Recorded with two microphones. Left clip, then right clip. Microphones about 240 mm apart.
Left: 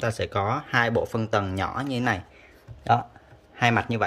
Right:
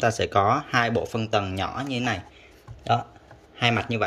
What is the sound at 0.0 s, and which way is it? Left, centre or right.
Speech, centre.